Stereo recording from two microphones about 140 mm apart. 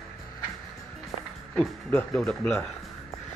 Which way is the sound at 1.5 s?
5° left (ahead or behind).